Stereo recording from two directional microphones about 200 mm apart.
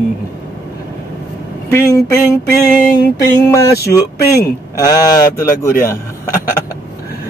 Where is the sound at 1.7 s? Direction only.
15° left (ahead or behind).